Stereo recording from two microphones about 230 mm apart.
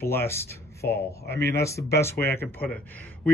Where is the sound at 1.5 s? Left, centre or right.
Centre.